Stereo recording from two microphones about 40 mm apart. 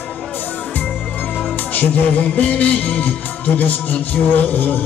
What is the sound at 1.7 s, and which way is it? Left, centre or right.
Music, left.